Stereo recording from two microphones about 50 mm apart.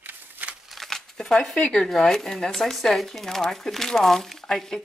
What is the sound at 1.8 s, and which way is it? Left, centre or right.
Speech, centre.